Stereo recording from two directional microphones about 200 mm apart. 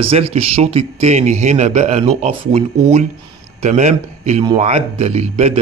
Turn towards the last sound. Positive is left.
turn(degrees=-30)  # may be behind; listen again after turning